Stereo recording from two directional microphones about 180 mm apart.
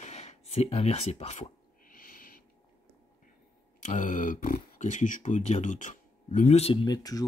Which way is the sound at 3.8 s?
45° left (ahead or behind).